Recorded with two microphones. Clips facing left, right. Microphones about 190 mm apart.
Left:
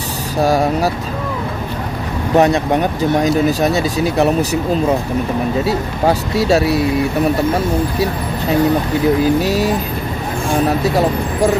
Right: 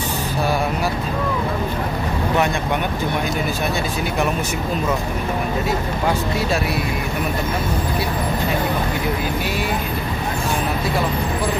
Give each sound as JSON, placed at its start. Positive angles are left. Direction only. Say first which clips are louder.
{"t": 0.4, "sound": "speech", "louder": "left 8 dB", "side_deg": 40}
{"t": 2.3, "sound": "speech", "louder": "left 10 dB", "side_deg": 35}
{"t": 9.4, "sound": "speech", "louder": "left 7 dB", "side_deg": 40}
{"t": 10.8, "sound": "speech", "louder": "left 6 dB", "side_deg": 40}